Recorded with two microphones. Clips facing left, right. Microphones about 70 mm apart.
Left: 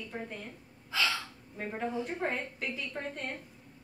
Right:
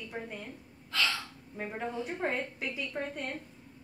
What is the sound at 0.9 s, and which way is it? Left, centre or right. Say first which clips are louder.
Gasp: even; centre.